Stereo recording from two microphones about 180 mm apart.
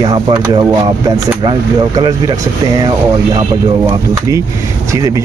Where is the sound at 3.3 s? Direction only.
20° right (ahead or behind).